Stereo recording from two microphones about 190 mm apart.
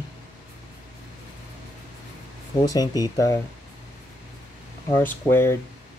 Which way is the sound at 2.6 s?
20° left (ahead or behind).